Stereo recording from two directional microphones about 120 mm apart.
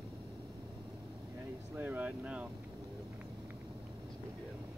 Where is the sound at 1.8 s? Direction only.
15° right (ahead or behind).